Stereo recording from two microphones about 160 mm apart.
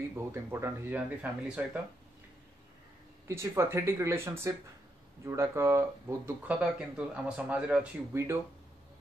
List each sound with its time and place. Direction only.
0.1 s speech: 15° right (ahead or behind)
3.3 s speech: 15° right (ahead or behind)